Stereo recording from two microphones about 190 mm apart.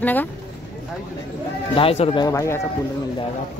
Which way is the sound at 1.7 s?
30° left (ahead or behind).